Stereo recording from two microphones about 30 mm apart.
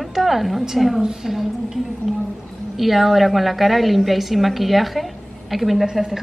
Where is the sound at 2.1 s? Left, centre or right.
Centre.